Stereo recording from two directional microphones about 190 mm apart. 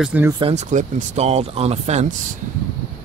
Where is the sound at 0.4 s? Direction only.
35° right (ahead or behind).